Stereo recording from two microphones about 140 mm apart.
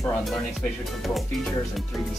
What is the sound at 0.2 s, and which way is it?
Speech, centre (ahead or behind).